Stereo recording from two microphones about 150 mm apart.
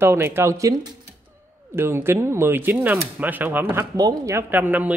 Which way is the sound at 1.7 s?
15° right (ahead or behind).